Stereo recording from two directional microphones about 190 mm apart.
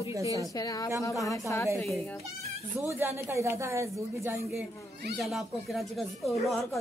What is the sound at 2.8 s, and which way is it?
Speech, 15° right (ahead or behind).